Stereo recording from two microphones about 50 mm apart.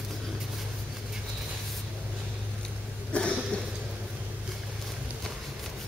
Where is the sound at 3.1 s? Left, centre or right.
Left.